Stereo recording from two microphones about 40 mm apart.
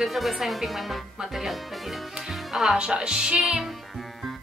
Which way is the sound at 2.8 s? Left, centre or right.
Centre.